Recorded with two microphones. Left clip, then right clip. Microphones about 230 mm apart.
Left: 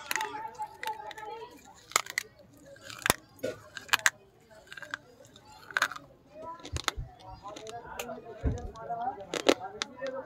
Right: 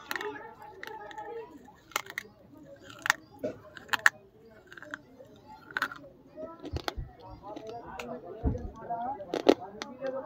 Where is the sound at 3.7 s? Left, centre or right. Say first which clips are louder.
Right 1 dB; left.